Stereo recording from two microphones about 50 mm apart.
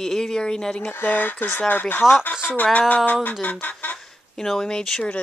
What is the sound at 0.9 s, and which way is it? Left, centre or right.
Speech, left.